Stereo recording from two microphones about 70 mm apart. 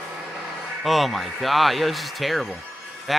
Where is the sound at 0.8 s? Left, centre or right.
Centre.